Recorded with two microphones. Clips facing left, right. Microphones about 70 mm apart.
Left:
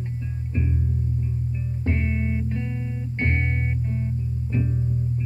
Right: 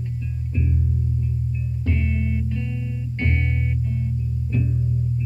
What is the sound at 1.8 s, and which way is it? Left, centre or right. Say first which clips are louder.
Music: even; left.